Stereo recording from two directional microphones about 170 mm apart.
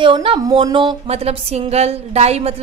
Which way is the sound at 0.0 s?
30° right (ahead or behind).